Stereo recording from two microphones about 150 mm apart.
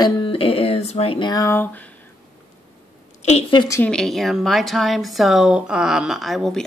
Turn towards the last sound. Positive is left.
turn(degrees=0)  # may be behind; listen again after turning